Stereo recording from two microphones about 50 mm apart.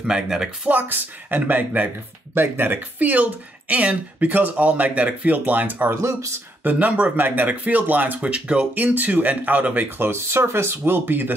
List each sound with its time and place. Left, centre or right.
0.0 s speech: centre
0.7 s speech: right
2.3 s speech: right
8.7 s speech: right
9.9 s speech: right